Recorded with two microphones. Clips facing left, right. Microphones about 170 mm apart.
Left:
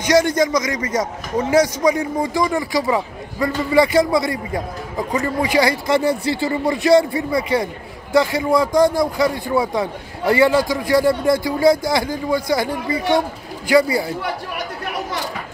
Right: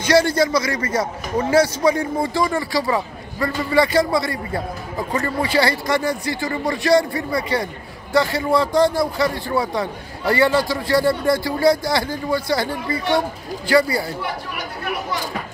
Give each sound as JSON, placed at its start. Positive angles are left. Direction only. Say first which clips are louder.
{"t": 0.0, "sound": "a man's voice", "louder": "left 1 dB", "side_deg": 15}